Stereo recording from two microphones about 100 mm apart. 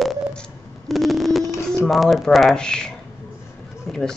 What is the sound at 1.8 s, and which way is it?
Speech, centre (ahead or behind).